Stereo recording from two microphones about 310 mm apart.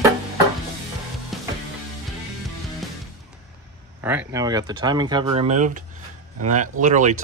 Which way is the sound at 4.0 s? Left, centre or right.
Centre.